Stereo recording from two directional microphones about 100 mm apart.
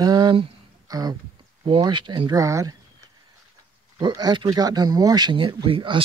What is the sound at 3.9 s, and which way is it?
Speech, 45° right (ahead or behind).